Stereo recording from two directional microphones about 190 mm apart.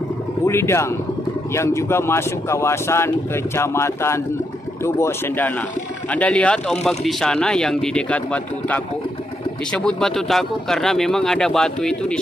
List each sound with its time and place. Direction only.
0.5 s speech: 15° left (ahead or behind)